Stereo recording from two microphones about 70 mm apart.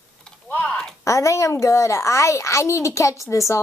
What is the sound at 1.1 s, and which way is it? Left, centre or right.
A woman's voice, left.